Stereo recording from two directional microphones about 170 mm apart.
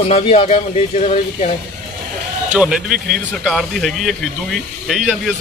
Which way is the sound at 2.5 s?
5° right (ahead or behind).